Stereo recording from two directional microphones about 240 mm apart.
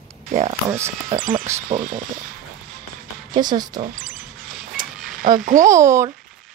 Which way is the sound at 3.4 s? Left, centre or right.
Centre.